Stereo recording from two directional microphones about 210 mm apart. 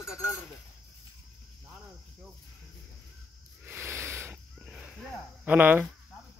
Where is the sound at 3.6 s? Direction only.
10° right (ahead or behind).